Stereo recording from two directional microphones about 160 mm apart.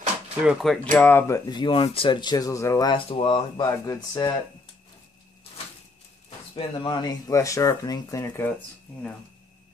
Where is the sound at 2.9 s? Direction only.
35° left (ahead or behind).